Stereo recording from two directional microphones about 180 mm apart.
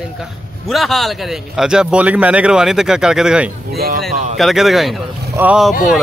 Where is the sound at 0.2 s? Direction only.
Centre (ahead or behind).